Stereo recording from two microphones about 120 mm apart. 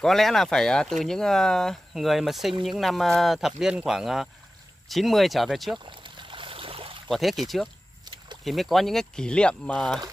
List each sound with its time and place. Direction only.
0.0 s speech: 5° left (ahead or behind)
5.9 s a sound: 45° right (ahead or behind)
7.1 s speech: centre (ahead or behind)